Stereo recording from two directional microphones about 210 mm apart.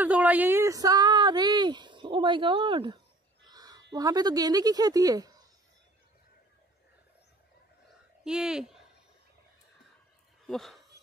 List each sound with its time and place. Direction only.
0.0 s speech: 5° right (ahead or behind)
8.2 s speech: 5° right (ahead or behind)
10.4 s speech: centre (ahead or behind)